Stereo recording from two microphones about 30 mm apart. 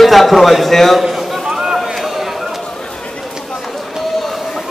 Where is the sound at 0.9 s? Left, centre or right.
Centre.